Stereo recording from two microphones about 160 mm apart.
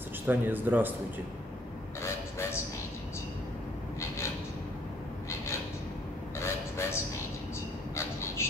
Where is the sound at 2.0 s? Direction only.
15° left (ahead or behind).